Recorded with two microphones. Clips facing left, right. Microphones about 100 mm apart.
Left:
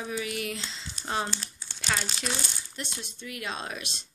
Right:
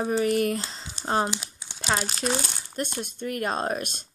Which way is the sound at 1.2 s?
15° right (ahead or behind).